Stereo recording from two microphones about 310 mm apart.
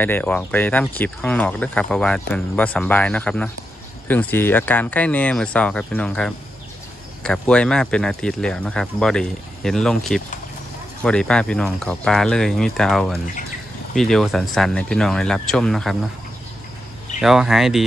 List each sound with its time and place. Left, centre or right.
0.0 s speech: centre
17.2 s speech: centre